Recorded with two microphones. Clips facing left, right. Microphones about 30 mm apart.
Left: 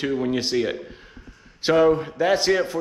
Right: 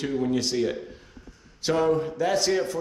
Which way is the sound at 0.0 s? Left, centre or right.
Left.